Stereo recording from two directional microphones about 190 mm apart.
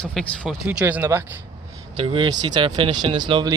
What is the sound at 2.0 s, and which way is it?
Speech, 25° right (ahead or behind).